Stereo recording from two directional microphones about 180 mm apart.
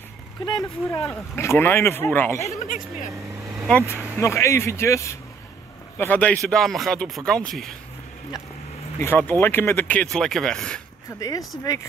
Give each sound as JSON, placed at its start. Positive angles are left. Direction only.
{"t": 0.5, "sound": "speech", "side_deg": 25}
{"t": 1.0, "sound": "speech", "side_deg": 15}
{"t": 2.4, "sound": "speech", "side_deg": 45}
{"t": 3.6, "sound": "speech", "side_deg": 10}
{"t": 9.0, "sound": "speech", "side_deg": 10}
{"t": 11.1, "sound": "speech", "side_deg": 20}